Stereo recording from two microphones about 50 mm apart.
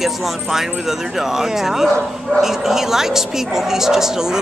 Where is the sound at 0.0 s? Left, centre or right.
Centre.